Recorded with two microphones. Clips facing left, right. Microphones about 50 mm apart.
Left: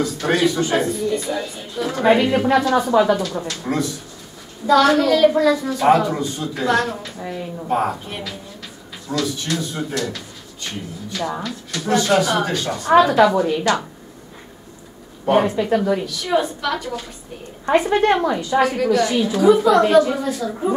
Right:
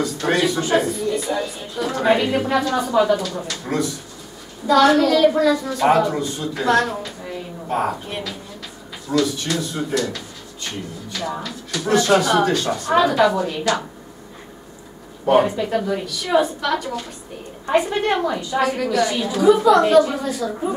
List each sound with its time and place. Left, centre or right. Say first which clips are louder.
0.0 s speech: left 1 dB; centre
15.2 s a woman's voice: even; centre
18.2 s a woman's voice: left 3 dB; centre
18.6 s speech: left 1 dB; centre